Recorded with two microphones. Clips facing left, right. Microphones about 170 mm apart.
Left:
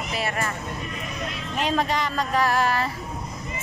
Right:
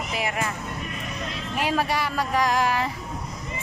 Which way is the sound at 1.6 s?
10° right (ahead or behind).